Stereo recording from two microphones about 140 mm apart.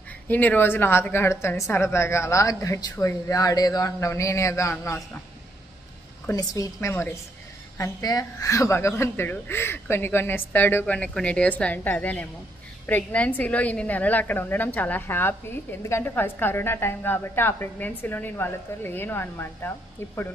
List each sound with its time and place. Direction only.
0.3 s a woman's voice: 10° left (ahead or behind)
6.3 s a woman's voice: 25° left (ahead or behind)